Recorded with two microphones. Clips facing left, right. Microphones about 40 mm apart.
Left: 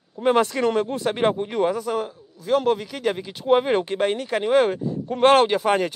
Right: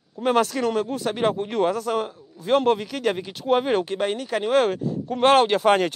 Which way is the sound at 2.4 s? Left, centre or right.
Right.